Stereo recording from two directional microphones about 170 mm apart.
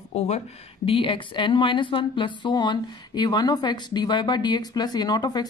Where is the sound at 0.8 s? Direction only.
30° left (ahead or behind).